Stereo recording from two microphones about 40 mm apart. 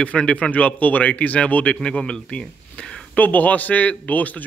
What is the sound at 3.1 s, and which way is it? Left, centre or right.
Speech, left.